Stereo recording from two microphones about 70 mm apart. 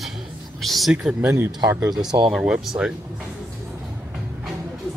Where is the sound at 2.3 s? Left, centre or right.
Centre.